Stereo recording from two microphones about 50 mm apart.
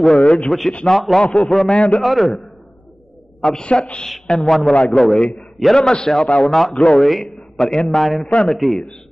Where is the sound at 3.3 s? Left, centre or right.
Centre.